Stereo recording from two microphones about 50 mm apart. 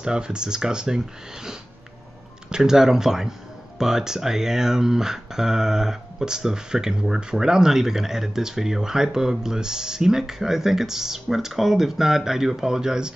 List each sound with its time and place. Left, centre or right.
0.0 s speech: centre